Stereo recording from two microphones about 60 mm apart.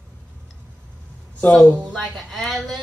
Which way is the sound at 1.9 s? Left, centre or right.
Centre.